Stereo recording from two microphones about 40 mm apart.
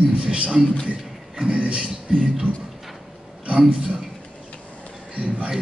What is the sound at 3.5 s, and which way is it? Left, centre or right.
Speech, right.